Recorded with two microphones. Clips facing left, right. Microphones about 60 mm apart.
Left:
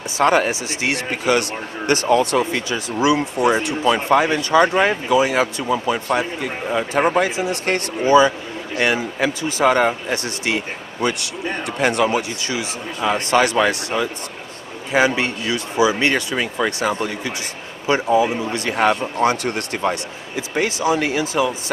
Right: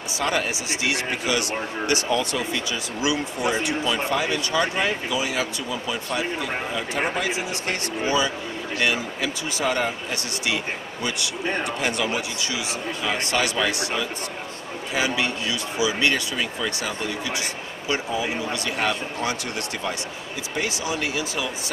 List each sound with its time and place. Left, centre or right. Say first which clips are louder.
0.2 s speech: left 9 dB; left
17.8 s speech: left 9 dB; left
21.0 s speech: left 7 dB; left